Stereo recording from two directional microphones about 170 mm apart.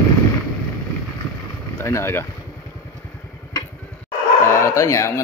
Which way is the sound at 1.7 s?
15° left (ahead or behind).